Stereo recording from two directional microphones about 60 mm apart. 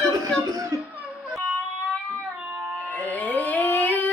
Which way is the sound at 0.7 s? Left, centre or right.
Right.